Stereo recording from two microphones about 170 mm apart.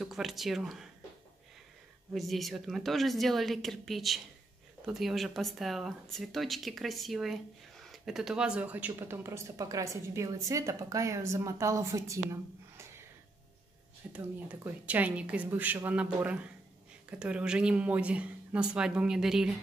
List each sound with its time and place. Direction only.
0.0 s speech: centre (ahead or behind)
2.1 s speech: centre (ahead or behind); by 12.8 s 15° right (ahead or behind)
14.1 s speech: 10° right (ahead or behind)